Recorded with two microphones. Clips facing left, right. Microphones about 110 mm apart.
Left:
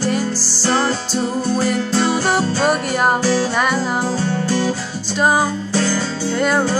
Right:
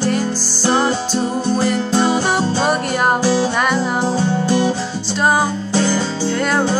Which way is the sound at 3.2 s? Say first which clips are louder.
Right 1 dB; 20° right (ahead or behind).